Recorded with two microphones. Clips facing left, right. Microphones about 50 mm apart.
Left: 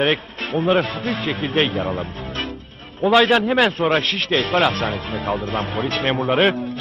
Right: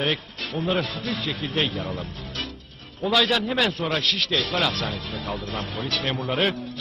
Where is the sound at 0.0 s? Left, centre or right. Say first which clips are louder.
Left 6 dB; left.